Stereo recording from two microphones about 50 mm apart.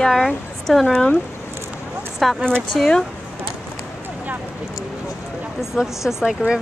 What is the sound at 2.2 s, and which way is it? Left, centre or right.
Speech, centre.